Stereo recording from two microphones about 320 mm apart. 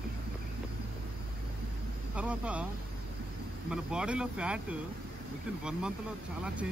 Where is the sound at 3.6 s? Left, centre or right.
Centre.